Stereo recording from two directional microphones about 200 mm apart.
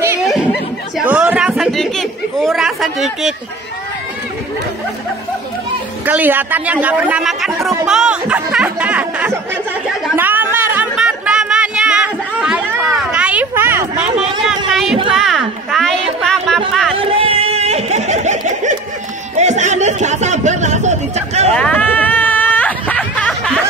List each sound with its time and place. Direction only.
0.9 s chatter: 5° right (ahead or behind)
6.0 s a man's voice: 10° right (ahead or behind)
10.1 s a sound: 10° right (ahead or behind)
14.7 s a woman's voice: centre (ahead or behind)
16.9 s speech: 25° right (ahead or behind)
21.5 s a sound: 5° left (ahead or behind)